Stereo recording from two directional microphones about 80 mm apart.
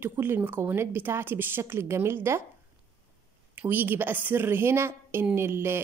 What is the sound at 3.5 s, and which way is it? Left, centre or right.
A woman's voice, right.